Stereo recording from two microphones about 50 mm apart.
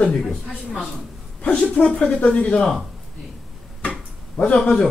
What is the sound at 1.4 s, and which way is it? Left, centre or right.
Speech, left.